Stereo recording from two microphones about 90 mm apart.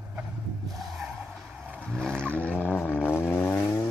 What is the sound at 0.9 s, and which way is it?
Skidding, 5° right (ahead or behind).